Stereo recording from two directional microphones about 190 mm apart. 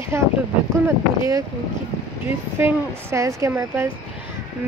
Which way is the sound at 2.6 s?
15° right (ahead or behind).